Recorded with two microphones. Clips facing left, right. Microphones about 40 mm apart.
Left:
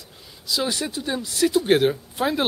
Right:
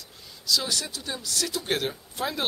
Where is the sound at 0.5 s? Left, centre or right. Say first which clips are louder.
Left 3 dB; left.